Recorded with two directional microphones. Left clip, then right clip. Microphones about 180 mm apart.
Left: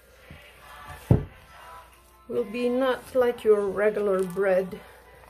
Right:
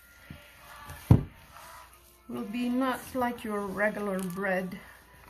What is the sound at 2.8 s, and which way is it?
A woman's voice, 55° left (ahead or behind).